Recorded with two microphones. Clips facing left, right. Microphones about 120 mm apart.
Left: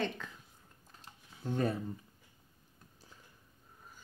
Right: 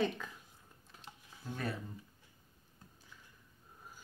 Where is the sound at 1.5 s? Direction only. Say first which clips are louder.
Left 7 dB; 35° left (ahead or behind).